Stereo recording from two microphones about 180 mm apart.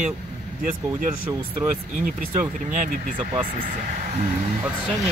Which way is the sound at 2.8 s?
45° right (ahead or behind).